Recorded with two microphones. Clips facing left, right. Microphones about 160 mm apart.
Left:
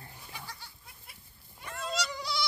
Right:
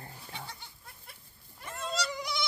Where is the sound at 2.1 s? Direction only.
20° right (ahead or behind).